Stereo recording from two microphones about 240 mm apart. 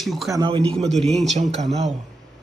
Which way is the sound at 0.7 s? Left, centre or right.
Centre.